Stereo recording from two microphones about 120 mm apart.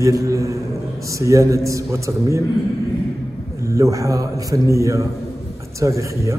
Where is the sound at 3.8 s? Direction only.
25° right (ahead or behind).